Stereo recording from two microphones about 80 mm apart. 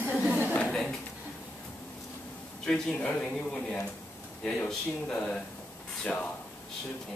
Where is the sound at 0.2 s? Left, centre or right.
Centre.